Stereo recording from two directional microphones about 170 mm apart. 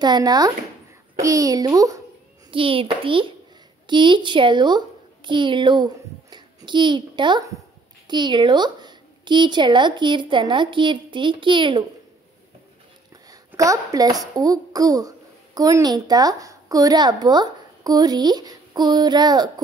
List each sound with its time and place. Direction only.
0.0 s a woman's voice: 25° right (ahead or behind)
2.5 s a child's voice: 30° right (ahead or behind)
13.5 s a child's voice: 20° right (ahead or behind)